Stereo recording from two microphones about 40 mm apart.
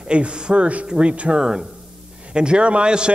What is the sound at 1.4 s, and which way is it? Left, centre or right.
A man's voice, centre.